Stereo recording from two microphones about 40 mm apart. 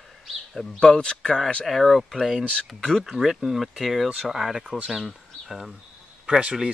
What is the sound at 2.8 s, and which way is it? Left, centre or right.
Speech, centre.